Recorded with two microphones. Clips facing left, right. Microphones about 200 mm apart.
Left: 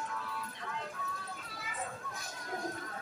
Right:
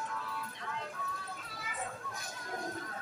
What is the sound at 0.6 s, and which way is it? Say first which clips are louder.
Vehicle: even; centre (ahead or behind).